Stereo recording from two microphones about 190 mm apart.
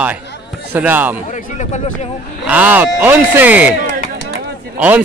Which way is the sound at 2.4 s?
5° right (ahead or behind).